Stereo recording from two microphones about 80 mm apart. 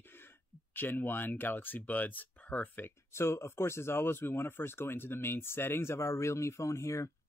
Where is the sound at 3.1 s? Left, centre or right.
Left.